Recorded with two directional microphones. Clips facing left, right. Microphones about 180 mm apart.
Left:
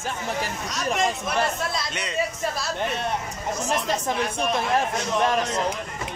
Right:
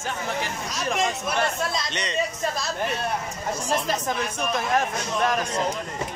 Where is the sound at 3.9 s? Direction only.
30° left (ahead or behind).